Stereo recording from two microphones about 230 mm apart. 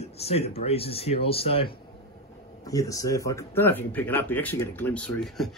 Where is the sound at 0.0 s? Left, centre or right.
Left.